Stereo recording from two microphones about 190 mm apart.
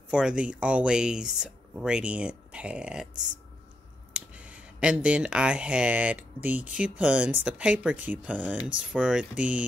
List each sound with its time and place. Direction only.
0.1 s speech: 5° right (ahead or behind)
4.1 s speech: 5° right (ahead or behind)